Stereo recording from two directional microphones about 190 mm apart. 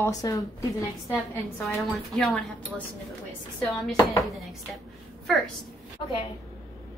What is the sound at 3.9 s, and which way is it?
Speech, 20° left (ahead or behind).